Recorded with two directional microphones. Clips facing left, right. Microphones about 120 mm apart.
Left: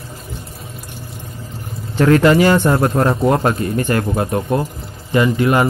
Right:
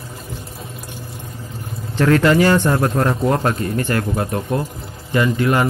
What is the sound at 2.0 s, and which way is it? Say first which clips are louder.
Speech: left 2 dB; 15° left (ahead or behind).